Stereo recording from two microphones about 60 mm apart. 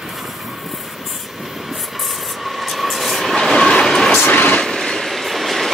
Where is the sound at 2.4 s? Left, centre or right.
Centre.